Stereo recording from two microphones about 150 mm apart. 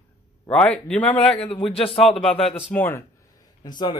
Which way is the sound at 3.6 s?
30° left (ahead or behind).